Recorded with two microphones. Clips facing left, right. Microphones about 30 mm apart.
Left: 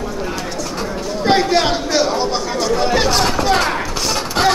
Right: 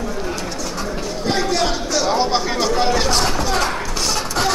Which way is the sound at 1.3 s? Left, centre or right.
Left.